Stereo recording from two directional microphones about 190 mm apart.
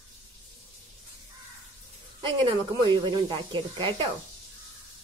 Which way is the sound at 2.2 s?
25° right (ahead or behind).